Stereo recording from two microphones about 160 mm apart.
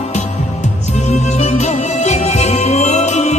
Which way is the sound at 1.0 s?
45° left (ahead or behind).